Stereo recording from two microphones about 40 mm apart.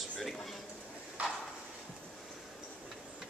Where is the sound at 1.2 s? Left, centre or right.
Right.